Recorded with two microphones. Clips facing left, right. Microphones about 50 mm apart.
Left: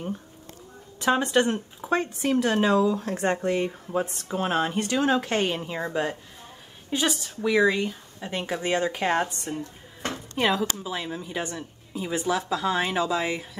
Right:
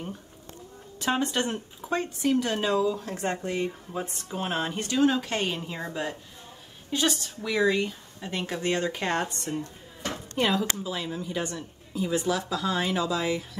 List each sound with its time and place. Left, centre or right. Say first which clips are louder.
1.0 s speech: left 5 dB; left
5.6 s speech: left 5 dB; centre